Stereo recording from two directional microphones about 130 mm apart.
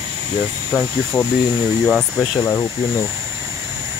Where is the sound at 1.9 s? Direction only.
Centre (ahead or behind).